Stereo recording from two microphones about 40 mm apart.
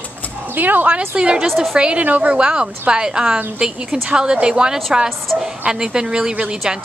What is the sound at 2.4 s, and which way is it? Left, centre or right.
A woman's voice, right.